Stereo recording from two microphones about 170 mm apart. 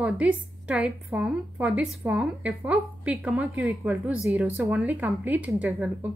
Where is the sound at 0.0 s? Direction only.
5° right (ahead or behind).